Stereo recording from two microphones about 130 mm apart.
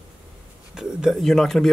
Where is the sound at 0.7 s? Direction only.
5° right (ahead or behind).